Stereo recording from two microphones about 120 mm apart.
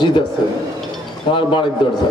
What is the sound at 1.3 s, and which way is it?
Speech, 40° left (ahead or behind).